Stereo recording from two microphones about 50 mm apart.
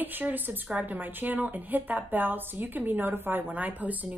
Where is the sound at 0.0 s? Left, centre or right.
Right.